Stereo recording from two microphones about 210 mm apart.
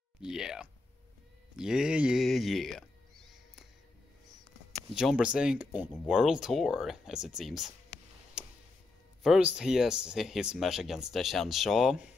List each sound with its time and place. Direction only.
0.2 s speech: 5° right (ahead or behind)
4.7 s speech: centre (ahead or behind)
8.4 s tick: 5° right (ahead or behind)
9.2 s speech: 5° right (ahead or behind)